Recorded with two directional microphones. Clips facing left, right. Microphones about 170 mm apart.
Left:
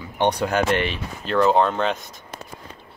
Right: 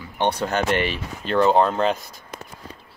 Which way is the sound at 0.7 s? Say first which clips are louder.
Even; centre (ahead or behind).